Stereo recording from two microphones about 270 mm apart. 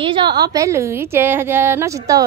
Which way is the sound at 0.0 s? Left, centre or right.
Centre.